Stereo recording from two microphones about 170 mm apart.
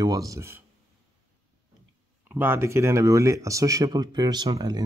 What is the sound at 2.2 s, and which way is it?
Speech, 10° right (ahead or behind).